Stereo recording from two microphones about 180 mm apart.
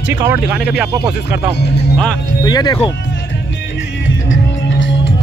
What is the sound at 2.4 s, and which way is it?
Speech, 25° left (ahead or behind).